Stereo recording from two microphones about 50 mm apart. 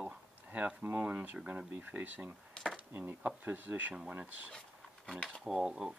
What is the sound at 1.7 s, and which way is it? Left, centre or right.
Speech, right.